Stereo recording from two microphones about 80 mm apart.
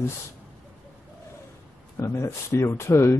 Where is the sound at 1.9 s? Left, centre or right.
Left.